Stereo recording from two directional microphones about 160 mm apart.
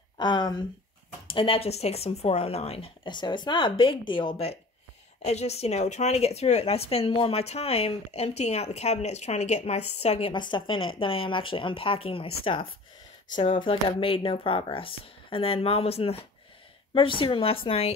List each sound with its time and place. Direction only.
0.2 s speech: 30° left (ahead or behind)
10.3 s speech: 30° left (ahead or behind)